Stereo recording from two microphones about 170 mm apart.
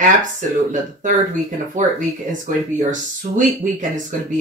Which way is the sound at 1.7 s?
50° right (ahead or behind).